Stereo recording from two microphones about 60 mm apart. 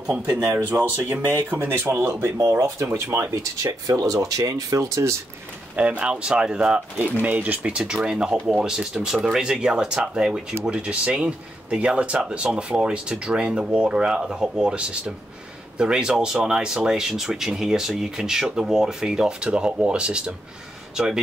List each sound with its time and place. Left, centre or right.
0.6 s speech: right
2.6 s speech: right
5.8 s speech: right
7.2 s speech: right; by 21.2 s centre